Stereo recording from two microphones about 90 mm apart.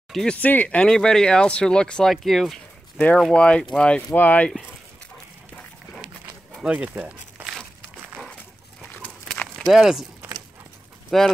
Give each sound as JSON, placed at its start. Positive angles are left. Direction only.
{"t": 0.1, "sound": "speech", "side_deg": 5}
{"t": 0.4, "sound": "speech", "side_deg": 20}
{"t": 6.5, "sound": "speech", "side_deg": -15}
{"t": 9.0, "sound": "a sound", "side_deg": 10}
{"t": 11.1, "sound": "speech", "side_deg": 5}